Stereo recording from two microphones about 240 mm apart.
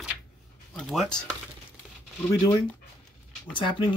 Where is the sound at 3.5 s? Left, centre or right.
Centre.